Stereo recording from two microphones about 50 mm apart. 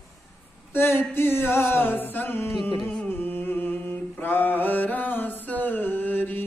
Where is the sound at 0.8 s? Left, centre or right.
Left.